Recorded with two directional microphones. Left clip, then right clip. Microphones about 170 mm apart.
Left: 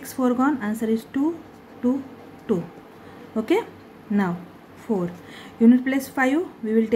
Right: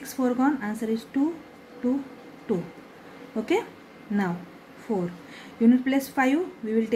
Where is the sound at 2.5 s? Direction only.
15° left (ahead or behind).